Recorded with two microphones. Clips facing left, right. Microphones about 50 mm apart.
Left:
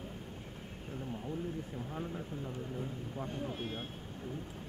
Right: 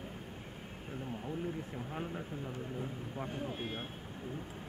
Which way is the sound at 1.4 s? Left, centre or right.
Right.